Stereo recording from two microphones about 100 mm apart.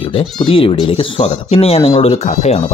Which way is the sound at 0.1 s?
60° left (ahead or behind).